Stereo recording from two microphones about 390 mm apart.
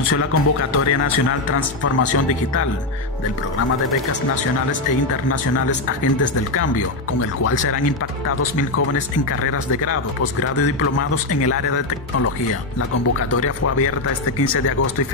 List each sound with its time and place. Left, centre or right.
0.1 s speech: left
8.3 s speech: left
13.3 s speech: left